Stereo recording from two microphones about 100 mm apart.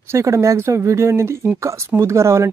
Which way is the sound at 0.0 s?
30° right (ahead or behind).